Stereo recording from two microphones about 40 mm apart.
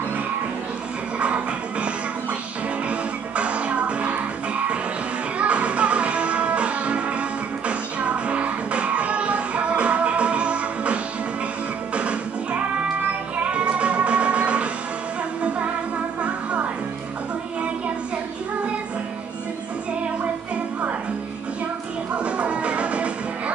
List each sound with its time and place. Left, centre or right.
1.2 s music: right
2.9 s music: right
16.2 s music: right
22.1 s music: right